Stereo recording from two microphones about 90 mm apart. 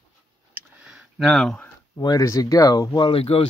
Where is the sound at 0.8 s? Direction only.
5° right (ahead or behind).